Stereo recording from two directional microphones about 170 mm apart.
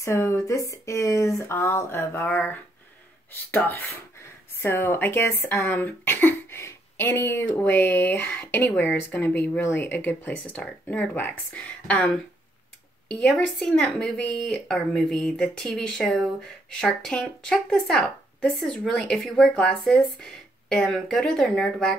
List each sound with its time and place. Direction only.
0.0 s a woman's voice: 15° left (ahead or behind)